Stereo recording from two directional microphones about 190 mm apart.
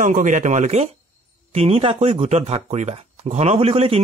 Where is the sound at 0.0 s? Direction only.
40° right (ahead or behind).